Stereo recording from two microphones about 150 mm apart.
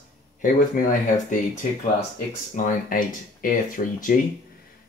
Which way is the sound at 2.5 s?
65° left (ahead or behind).